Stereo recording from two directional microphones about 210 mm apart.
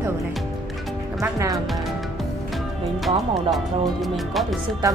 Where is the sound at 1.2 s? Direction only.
15° right (ahead or behind).